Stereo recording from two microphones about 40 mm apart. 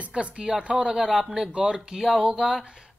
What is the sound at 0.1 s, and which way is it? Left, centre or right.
Speech, right.